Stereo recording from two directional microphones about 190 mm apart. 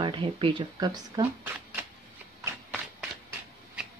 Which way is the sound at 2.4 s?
10° right (ahead or behind).